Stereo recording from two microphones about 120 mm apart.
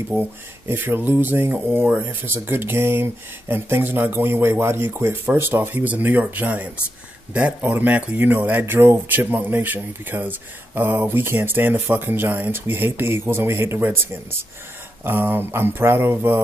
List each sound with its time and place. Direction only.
0.1 s speech: 15° right (ahead or behind)